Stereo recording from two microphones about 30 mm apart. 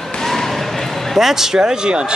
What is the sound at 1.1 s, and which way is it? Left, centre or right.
Speech, centre.